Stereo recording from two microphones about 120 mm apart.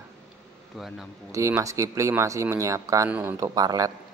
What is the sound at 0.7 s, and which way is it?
Speech, centre (ahead or behind).